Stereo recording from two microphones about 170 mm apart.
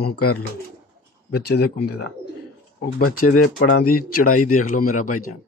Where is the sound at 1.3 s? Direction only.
65° left (ahead or behind).